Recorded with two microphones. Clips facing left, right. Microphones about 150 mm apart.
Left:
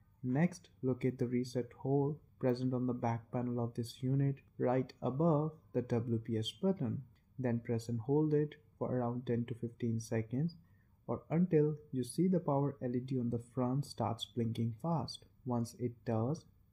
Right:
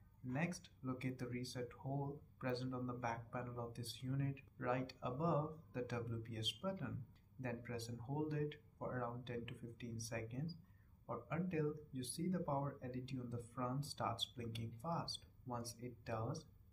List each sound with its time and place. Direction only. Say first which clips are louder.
0.3 s speech: left 10 dB; 45° left (ahead or behind)